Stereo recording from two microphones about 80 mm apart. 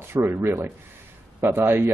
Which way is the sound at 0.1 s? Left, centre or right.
Right.